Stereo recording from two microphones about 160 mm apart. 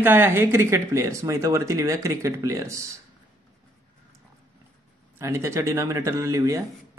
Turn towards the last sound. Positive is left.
turn(degrees=-20)  # may be behind; listen again after turning